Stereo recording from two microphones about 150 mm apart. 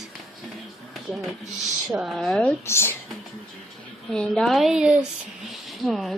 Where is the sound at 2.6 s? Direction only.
15° left (ahead or behind).